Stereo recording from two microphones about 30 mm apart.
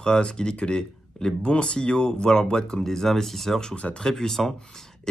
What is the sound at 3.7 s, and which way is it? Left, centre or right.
Speech, left.